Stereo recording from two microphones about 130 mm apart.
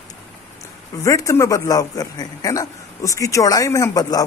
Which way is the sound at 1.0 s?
25° left (ahead or behind).